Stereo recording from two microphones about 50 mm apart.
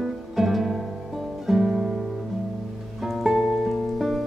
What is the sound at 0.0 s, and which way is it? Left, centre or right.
Music, centre.